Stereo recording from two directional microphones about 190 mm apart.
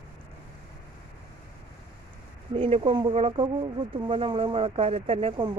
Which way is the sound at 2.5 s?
30° right (ahead or behind).